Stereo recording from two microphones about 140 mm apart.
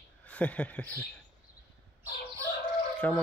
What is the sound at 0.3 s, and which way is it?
Speech, 10° left (ahead or behind).